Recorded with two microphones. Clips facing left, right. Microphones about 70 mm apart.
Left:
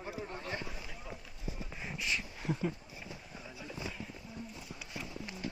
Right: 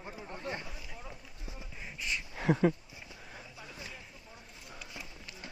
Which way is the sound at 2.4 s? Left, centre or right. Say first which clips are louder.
Right 12 dB; right.